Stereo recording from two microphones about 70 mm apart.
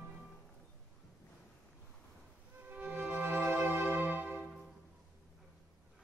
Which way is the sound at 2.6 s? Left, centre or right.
Right.